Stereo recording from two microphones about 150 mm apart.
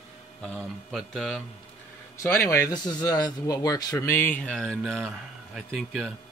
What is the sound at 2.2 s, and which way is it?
Speech, 20° left (ahead or behind).